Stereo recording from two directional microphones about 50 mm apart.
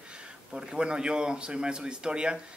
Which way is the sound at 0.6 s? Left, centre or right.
Centre.